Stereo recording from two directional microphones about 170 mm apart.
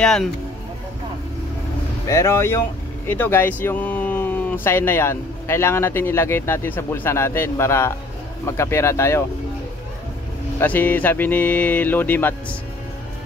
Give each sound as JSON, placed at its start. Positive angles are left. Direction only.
{"t": 0.0, "sound": "speech", "side_deg": 5}
{"t": 2.0, "sound": "speech", "side_deg": 15}
{"t": 10.6, "sound": "speech", "side_deg": 10}